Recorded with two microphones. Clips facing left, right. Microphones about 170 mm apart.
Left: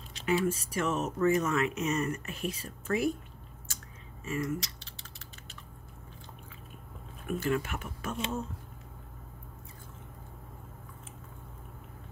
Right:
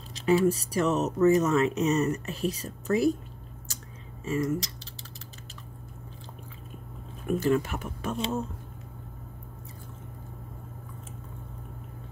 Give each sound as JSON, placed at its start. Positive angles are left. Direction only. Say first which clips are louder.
{"t": 0.1, "sound": "speech", "louder": "right 6 dB", "side_deg": -35}
{"t": 3.6, "sound": "typing", "louder": "right 4 dB", "side_deg": -35}
{"t": 7.2, "sound": "speech", "louder": "right 6 dB", "side_deg": -40}